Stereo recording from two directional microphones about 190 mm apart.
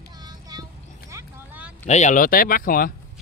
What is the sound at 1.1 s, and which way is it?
Vehicle, 10° right (ahead or behind).